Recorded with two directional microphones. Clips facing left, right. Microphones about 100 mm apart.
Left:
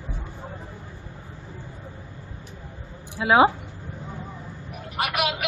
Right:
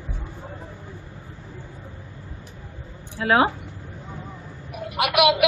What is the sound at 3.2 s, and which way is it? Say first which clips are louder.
Speech: left 1 dB; 10° left (ahead or behind).